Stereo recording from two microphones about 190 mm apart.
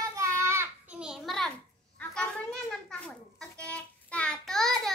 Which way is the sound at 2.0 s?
5° left (ahead or behind).